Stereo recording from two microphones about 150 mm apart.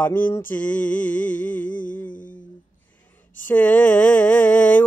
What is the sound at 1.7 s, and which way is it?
Music, 65° left (ahead or behind).